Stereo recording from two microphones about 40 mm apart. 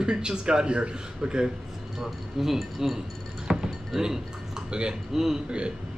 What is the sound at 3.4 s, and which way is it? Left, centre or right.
Cutlery, centre.